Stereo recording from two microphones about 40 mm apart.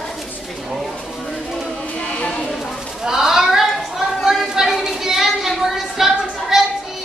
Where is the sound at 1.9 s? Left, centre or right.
Left.